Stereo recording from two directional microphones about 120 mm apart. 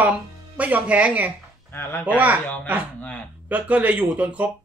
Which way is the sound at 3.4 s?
15° right (ahead or behind).